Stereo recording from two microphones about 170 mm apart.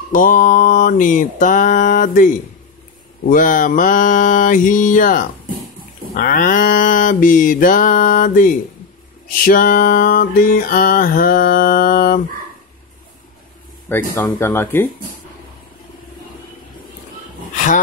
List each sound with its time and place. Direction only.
0.1 s mantra: 50° left (ahead or behind)
9.4 s music: 55° left (ahead or behind)
13.8 s speech: 10° left (ahead or behind)